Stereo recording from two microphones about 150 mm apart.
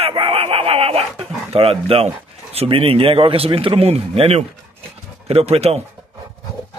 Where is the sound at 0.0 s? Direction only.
40° right (ahead or behind).